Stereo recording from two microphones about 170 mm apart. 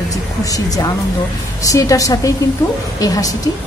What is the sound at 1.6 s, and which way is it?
A woman's voice, 20° left (ahead or behind).